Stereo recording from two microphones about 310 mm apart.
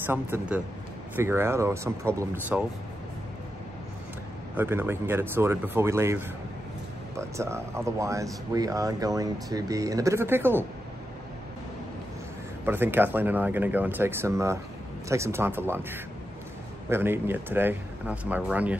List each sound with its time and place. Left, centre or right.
0.0 s speech: centre
4.6 s speech: centre
12.6 s speech: centre